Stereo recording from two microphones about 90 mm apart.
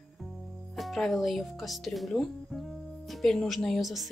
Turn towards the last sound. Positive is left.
turn(degrees=0)  # may be behind; listen again after turning